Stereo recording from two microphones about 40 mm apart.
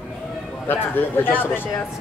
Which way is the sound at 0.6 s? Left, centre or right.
Left.